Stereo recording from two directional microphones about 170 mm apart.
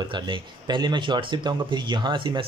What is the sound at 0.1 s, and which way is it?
Speech, 25° right (ahead or behind).